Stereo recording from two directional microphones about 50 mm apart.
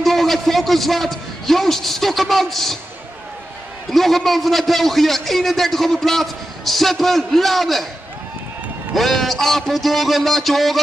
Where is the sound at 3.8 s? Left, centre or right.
Centre.